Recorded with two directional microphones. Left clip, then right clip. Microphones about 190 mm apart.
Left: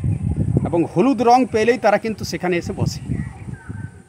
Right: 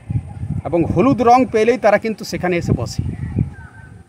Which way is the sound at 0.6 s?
20° right (ahead or behind).